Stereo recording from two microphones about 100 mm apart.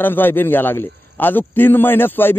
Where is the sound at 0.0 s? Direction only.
20° left (ahead or behind).